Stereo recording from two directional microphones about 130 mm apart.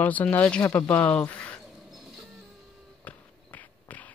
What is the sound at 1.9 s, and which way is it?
Printer, centre (ahead or behind).